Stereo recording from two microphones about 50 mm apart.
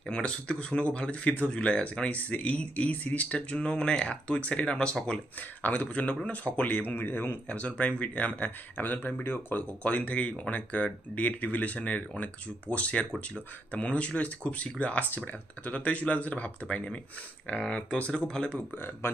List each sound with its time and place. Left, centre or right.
0.1 s speech: left
5.6 s speech: left
7.4 s speech: left
9.8 s speech: left
19.0 s speech: left